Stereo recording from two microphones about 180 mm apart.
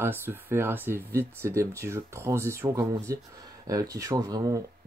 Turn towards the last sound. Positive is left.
turn(degrees=-20)  # may be behind; listen again after turning